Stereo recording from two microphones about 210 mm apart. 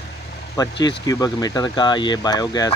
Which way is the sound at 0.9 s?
15° left (ahead or behind).